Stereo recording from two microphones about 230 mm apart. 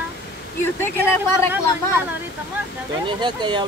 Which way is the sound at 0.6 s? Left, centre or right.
Centre.